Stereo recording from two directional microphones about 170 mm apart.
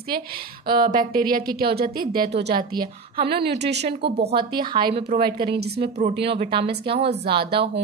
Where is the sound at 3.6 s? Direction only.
85° right.